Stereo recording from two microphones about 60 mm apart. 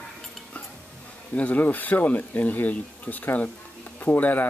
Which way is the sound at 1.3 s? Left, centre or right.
Left.